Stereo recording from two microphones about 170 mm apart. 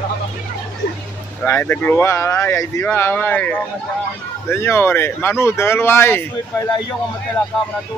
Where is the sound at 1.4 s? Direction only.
10° left (ahead or behind).